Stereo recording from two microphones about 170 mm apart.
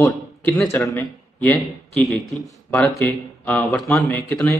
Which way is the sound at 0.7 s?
15° left (ahead or behind).